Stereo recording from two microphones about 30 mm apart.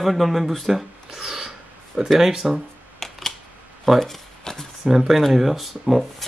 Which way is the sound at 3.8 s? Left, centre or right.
Centre.